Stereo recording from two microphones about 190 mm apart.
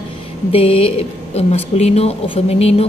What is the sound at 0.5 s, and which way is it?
Speech, 30° left (ahead or behind).